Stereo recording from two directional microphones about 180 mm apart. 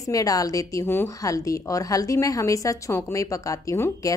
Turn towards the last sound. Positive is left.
turn(degrees=20)  # may be behind; listen again after turning